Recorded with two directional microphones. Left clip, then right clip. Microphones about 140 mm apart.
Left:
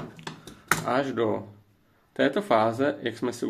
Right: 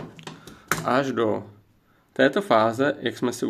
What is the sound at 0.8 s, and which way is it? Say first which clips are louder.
Speech: right 6 dB; 35° right (ahead or behind).